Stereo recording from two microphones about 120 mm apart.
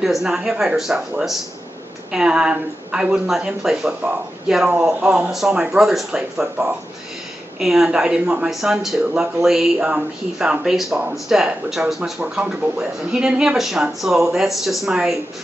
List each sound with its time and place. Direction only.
0.0 s speech: 5° right (ahead or behind)